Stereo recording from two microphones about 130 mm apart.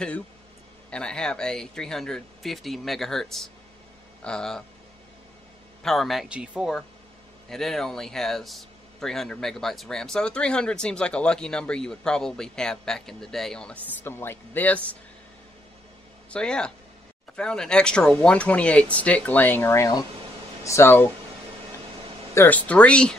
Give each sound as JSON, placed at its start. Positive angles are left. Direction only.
{"t": 0.8, "sound": "speech", "side_deg": 5}
{"t": 5.8, "sound": "speech", "side_deg": 0}
{"t": 14.0, "sound": "speech", "side_deg": 20}
{"t": 16.3, "sound": "speech", "side_deg": 5}
{"t": 22.3, "sound": "speech", "side_deg": 15}